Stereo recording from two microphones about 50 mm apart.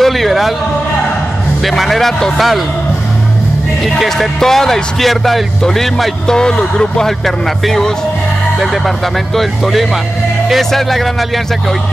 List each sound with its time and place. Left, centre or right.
0.0 s speech: centre
1.6 s speech: centre
3.8 s speech: centre
6.3 s speech: centre